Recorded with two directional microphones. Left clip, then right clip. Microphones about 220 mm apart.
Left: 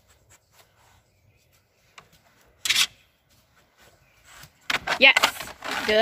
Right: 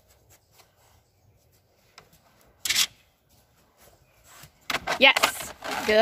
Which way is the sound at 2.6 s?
Centre (ahead or behind).